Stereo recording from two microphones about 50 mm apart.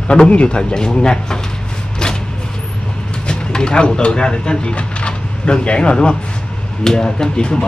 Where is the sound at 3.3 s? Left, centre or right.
Centre.